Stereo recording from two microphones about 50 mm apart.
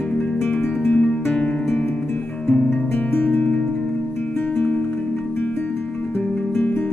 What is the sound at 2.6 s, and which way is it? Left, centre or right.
Guitar, left.